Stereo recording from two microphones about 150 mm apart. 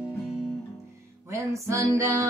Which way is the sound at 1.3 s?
20° right (ahead or behind).